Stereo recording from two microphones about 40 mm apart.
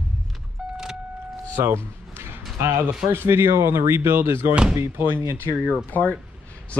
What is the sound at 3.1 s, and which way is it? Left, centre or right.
Speech, right.